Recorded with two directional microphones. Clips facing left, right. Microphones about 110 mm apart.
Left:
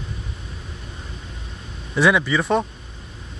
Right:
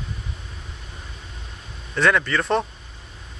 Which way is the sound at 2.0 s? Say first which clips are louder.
Left 2 dB; 10° left (ahead or behind).